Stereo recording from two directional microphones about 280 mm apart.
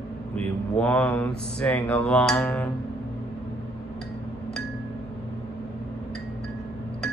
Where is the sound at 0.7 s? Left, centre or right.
Centre.